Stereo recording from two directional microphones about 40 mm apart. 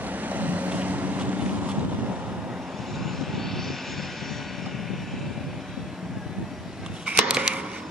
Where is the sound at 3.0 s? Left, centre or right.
Centre.